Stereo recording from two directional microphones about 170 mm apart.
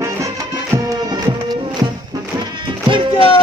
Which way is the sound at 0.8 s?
25° right (ahead or behind).